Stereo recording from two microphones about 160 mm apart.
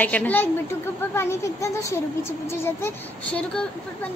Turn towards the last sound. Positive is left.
turn(degrees=10)  # may be behind; listen again after turning